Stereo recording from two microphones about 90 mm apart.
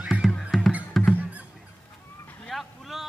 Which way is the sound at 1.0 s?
Centre (ahead or behind).